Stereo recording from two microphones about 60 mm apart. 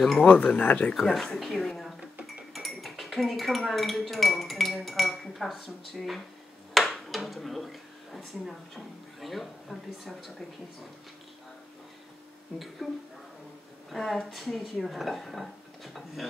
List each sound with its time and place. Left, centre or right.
0.3 s speech: left
0.9 s speech: centre
12.8 s speech: centre